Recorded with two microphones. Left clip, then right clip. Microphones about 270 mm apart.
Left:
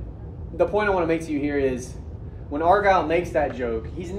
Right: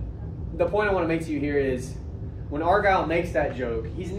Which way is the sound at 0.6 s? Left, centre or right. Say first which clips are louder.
Left 2 dB; left.